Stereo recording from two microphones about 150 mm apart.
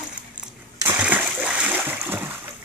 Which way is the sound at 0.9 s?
10° right (ahead or behind).